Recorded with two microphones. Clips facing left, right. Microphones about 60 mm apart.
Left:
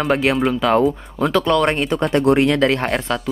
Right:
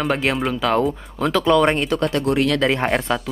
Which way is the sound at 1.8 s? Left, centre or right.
Centre.